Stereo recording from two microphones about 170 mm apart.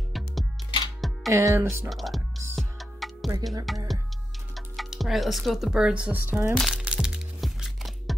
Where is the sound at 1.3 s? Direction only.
15° right (ahead or behind).